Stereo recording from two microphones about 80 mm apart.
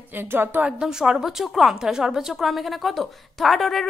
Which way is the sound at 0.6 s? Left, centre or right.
Centre.